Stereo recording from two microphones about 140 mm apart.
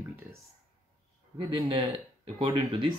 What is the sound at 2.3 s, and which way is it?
Speech, 35° right (ahead or behind).